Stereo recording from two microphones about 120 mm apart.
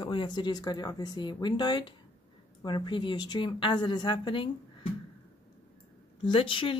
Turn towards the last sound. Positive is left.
turn(degrees=45)  # may be behind; listen again after turning